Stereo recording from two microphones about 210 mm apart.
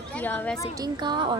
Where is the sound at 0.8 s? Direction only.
20° right (ahead or behind).